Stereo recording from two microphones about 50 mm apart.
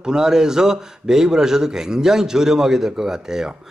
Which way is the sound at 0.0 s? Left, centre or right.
Centre.